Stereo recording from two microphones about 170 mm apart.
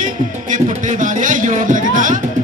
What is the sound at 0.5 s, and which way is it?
Music, 45° right (ahead or behind).